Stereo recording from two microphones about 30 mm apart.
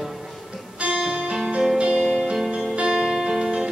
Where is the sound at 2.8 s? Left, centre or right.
Right.